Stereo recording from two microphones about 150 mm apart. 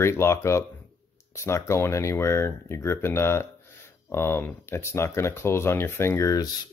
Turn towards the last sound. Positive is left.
turn(degrees=20)  # may be behind; listen again after turning